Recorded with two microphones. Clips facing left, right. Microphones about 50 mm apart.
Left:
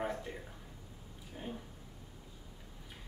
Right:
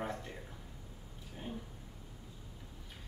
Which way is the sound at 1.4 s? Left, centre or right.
Centre.